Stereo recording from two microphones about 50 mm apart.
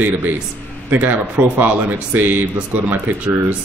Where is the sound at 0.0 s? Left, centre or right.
Right.